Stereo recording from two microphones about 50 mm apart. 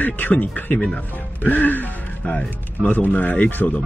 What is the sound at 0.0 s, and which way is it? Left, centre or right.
Speech, left.